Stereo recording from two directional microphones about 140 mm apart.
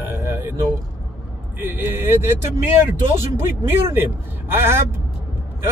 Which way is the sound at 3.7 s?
15° right (ahead or behind).